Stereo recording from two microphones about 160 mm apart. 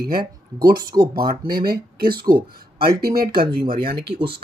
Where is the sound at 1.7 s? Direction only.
70° right (ahead or behind).